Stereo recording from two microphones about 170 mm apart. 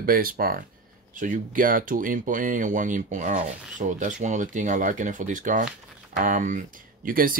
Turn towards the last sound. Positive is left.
turn(degrees=-55)  # may be behind; listen again after turning